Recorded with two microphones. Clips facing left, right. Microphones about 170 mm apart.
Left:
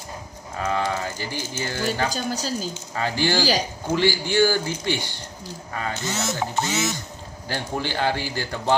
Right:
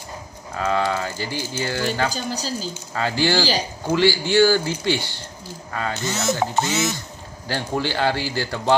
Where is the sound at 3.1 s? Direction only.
15° left (ahead or behind).